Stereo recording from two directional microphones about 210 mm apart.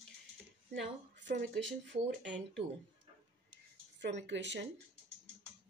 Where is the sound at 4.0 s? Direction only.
55° right (ahead or behind).